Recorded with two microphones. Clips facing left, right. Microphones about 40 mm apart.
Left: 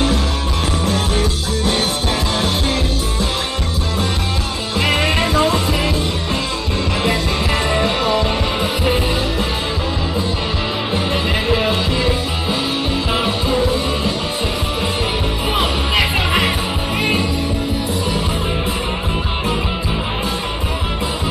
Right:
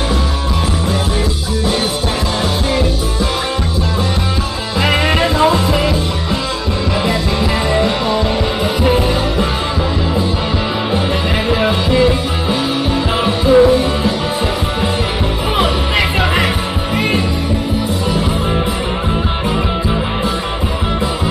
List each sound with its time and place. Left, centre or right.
4.8 s music: centre
7.7 s music: centre
11.4 s music: centre